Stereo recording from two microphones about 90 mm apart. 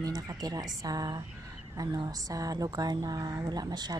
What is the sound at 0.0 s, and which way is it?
Speech, 45° right (ahead or behind).